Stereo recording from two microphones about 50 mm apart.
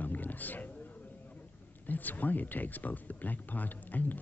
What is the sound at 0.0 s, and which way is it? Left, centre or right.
A man's voice, left.